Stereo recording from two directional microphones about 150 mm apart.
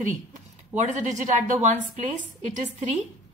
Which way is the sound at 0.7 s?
55° right (ahead or behind).